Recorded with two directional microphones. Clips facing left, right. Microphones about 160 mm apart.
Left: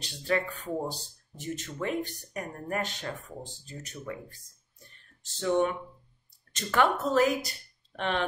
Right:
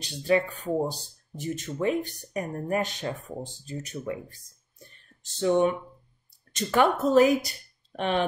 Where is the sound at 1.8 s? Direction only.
15° right (ahead or behind).